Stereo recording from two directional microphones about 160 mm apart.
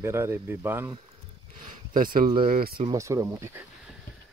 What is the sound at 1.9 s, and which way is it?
Speech, 60° right (ahead or behind).